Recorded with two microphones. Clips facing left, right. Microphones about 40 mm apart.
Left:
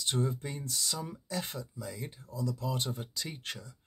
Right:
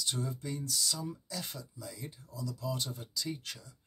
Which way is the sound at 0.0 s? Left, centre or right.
Left.